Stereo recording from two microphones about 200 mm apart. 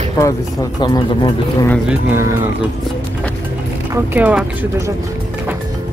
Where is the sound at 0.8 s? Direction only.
20° left (ahead or behind).